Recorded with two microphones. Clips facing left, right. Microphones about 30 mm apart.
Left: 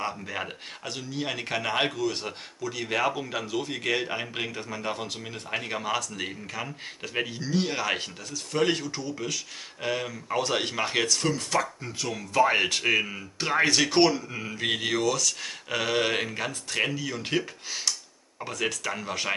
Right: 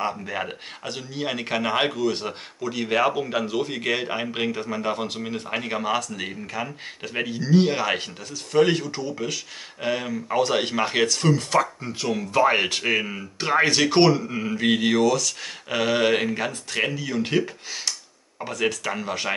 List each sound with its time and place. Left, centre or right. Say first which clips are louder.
0.0 s speech: right 5 dB; centre